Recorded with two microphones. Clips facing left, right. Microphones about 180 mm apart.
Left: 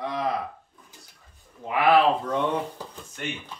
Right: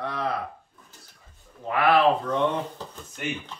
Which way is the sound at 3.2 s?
5° right (ahead or behind).